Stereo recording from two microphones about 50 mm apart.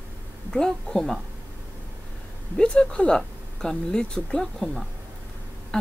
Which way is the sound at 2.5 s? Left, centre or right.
Centre.